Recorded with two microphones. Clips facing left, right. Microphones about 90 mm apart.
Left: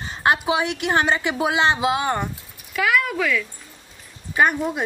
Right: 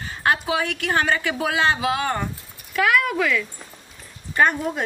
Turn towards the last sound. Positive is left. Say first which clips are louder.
# even
turn(degrees=10)  # may be behind; listen again after turning